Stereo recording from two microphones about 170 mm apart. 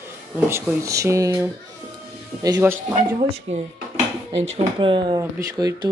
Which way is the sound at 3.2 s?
40° right (ahead or behind).